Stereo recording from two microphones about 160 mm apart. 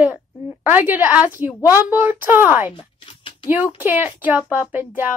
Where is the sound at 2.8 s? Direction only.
30° left (ahead or behind).